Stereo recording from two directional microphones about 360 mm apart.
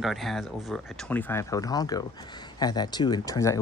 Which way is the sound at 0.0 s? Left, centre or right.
Centre.